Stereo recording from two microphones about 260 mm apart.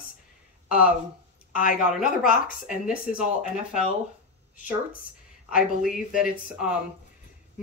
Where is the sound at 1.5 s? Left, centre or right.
Left.